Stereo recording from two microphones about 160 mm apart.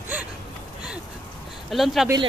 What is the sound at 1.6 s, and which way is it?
Speech, centre (ahead or behind).